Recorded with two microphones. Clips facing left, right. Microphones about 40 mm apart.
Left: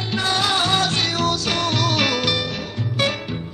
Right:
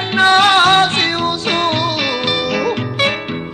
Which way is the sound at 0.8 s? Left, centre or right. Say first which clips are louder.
Right 5 dB; right.